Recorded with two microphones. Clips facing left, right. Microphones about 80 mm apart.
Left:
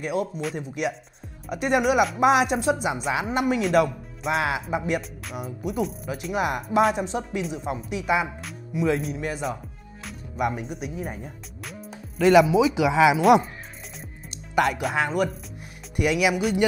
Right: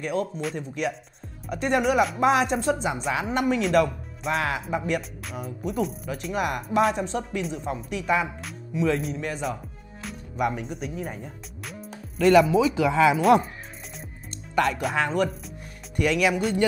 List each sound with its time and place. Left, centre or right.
0.0 s speech: centre
5.2 s speech: centre
10.0 s music: centre
12.2 s speech: centre
14.5 s speech: centre